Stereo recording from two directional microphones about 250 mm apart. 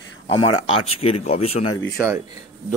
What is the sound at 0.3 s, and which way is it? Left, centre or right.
Speech, left.